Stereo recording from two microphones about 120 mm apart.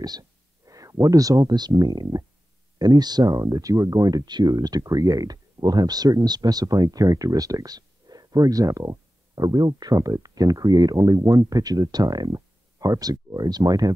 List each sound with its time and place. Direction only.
0.7 s speech: 30° right (ahead or behind)